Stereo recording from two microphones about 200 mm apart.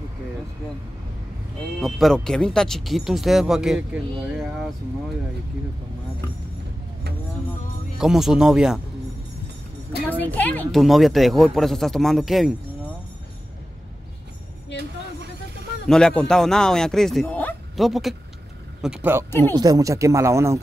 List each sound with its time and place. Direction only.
1.8 s speech: centre (ahead or behind)
8.0 s speech: centre (ahead or behind)
10.0 s speech: 10° left (ahead or behind)
15.9 s speech: 5° left (ahead or behind); by 20.6 s 15° right (ahead or behind)